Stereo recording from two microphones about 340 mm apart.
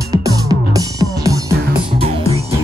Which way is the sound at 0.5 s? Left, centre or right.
Centre.